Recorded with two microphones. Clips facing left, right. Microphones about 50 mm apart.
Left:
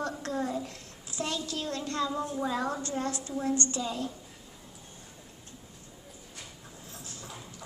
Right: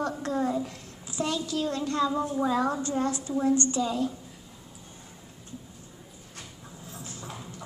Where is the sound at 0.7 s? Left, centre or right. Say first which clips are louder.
Right 3 dB; right.